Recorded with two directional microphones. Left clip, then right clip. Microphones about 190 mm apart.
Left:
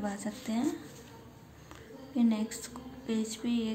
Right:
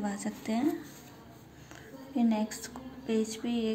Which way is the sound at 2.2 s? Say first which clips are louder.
Right 1 dB; 20° right (ahead or behind).